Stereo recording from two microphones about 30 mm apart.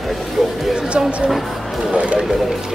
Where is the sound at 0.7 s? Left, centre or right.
Right.